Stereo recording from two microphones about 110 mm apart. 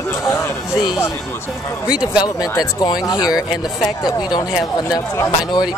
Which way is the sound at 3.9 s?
35° left (ahead or behind).